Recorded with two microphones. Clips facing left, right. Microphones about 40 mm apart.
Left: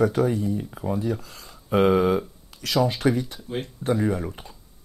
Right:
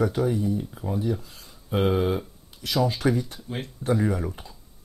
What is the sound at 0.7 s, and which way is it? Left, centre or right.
Speech, left.